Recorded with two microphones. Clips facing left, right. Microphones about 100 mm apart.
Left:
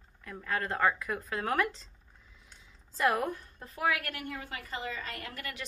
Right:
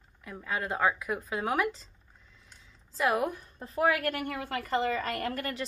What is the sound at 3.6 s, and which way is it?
Speech, 30° right (ahead or behind).